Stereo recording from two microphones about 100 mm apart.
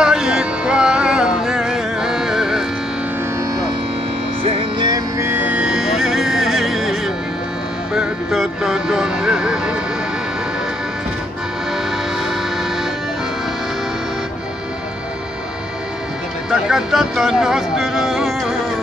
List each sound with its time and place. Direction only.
0.0 s music: 5° right (ahead or behind)
4.7 s music: 40° right (ahead or behind)
5.2 s music: 20° right (ahead or behind)
16.4 s speech: 5° right (ahead or behind)